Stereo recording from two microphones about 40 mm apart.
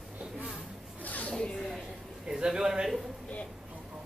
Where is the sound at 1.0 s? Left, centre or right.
Left.